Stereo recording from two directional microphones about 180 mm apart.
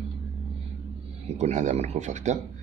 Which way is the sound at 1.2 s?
40° right (ahead or behind).